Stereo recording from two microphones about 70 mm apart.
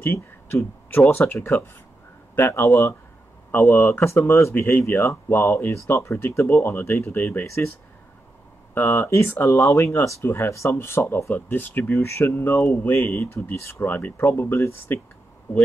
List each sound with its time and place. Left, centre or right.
0.0 s speech: left
6.6 s speech: left
9.0 s speech: left
10.2 s speech: left